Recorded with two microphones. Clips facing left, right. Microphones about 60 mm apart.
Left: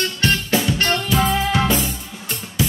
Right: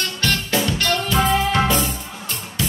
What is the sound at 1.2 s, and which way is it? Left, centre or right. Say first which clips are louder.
Music: right 2 dB; right.